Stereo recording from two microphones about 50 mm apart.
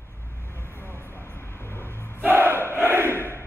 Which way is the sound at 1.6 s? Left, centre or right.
Left.